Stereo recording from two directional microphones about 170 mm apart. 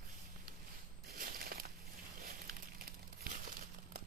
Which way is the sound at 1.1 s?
65° right (ahead or behind).